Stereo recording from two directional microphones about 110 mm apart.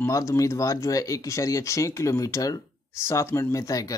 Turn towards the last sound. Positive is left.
turn(degrees=35)  # may be behind; listen again after turning